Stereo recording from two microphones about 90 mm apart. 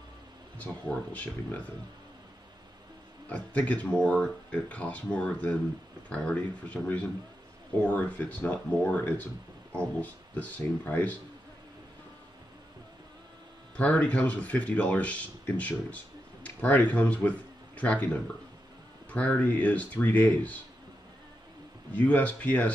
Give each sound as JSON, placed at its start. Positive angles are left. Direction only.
{"t": 0.6, "sound": "speech", "side_deg": 15}
{"t": 3.3, "sound": "speech", "side_deg": 15}
{"t": 13.7, "sound": "speech", "side_deg": 15}
{"t": 19.1, "sound": "speech", "side_deg": 15}
{"t": 21.9, "sound": "speech", "side_deg": 15}